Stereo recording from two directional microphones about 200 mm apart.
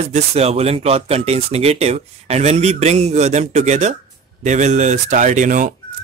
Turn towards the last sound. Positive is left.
turn(degrees=-40)  # may be behind; listen again after turning